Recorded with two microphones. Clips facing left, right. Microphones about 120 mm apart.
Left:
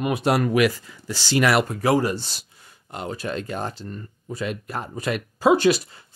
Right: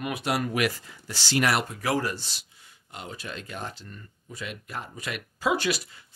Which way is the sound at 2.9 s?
45° left (ahead or behind).